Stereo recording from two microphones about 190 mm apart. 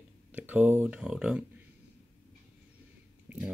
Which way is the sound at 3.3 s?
10° right (ahead or behind).